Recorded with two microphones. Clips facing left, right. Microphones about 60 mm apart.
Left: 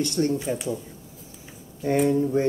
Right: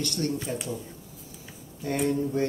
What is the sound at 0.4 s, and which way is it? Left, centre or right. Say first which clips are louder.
Speech: left 5 dB; centre.